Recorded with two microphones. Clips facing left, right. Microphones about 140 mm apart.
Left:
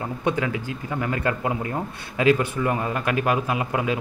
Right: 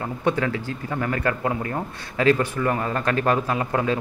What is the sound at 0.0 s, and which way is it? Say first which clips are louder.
A man's voice: right 1 dB; 15° left (ahead or behind).